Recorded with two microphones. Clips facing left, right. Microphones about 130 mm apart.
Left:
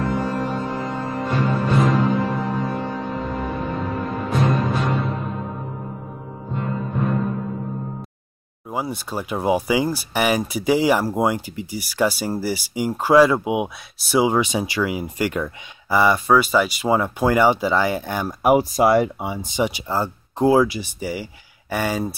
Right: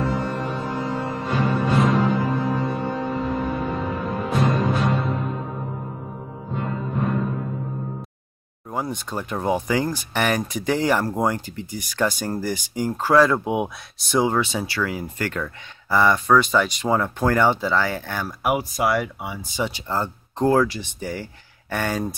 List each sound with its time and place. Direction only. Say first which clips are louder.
0.0 s music: left 2 dB; centre (ahead or behind)
8.6 s speech: left 1 dB; 5° left (ahead or behind)
18.4 s speech: left 6 dB; 30° left (ahead or behind); by 22.1 s 5° left (ahead or behind)